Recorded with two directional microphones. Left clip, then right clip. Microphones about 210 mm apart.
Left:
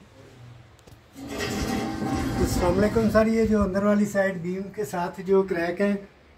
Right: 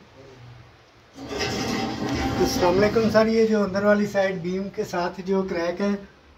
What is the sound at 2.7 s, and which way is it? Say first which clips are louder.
Speech: right 1 dB; 10° right (ahead or behind).